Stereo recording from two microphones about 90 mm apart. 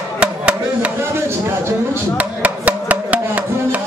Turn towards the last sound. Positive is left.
turn(degrees=-15)  # may be behind; listen again after turning